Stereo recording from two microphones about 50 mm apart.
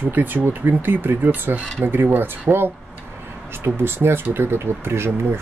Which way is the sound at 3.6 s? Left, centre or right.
Right.